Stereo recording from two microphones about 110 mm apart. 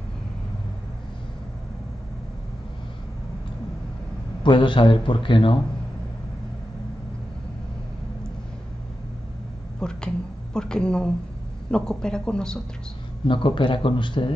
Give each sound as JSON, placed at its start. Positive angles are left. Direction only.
{"t": 4.4, "sound": "a man's voice", "side_deg": 45}
{"t": 9.8, "sound": "speech", "side_deg": 5}
{"t": 13.3, "sound": "a man's voice", "side_deg": 45}